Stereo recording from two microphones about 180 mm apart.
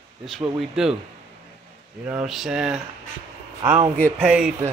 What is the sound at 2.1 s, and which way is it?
Speech, centre (ahead or behind).